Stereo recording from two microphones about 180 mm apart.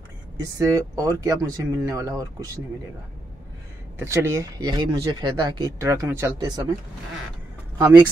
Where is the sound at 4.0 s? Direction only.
15° right (ahead or behind).